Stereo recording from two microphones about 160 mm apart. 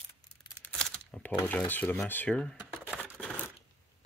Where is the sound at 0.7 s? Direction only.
5° left (ahead or behind).